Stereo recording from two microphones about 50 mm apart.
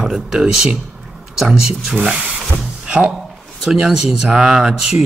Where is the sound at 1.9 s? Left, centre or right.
Right.